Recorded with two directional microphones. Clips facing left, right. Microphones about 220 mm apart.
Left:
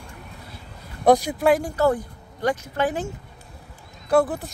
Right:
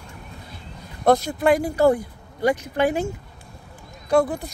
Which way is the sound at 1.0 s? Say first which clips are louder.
Left 1 dB; 15° left (ahead or behind).